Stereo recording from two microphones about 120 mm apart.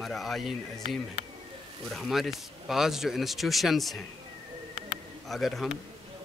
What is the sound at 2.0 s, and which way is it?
Speech, centre (ahead or behind).